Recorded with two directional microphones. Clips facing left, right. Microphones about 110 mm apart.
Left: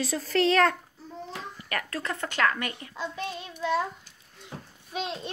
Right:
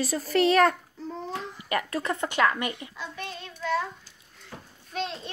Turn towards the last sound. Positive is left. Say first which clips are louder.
# even
turn(degrees=10)  # may be behind; listen again after turning